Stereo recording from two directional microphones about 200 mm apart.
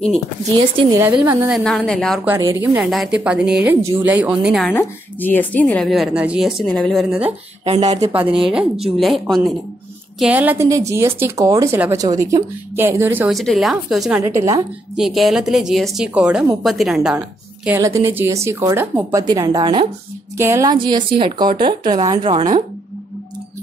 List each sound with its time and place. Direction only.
0.6 s speech: 15° right (ahead or behind)
1.5 s speech: centre (ahead or behind)
2.2 s speech: 15° right (ahead or behind)
4.7 s speech: 10° left (ahead or behind)
7.6 s speech: 35° right (ahead or behind)
8.0 s speech: 10° right (ahead or behind)
13.3 s speech: centre (ahead or behind)
17.6 s a woman's voice: 15° right (ahead or behind)
22.3 s speech: 40° right (ahead or behind)